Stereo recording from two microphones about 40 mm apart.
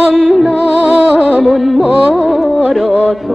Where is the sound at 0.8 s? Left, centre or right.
Right.